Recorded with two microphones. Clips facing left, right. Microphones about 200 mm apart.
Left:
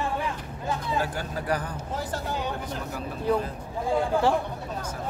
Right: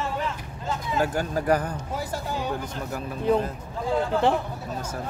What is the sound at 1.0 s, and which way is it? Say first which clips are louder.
Speech: right 5 dB; 45° right (ahead or behind).